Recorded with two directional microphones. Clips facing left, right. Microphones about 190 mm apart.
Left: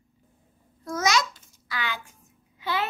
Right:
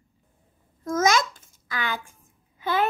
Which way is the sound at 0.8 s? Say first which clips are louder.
Right 3 dB; 50° right (ahead or behind).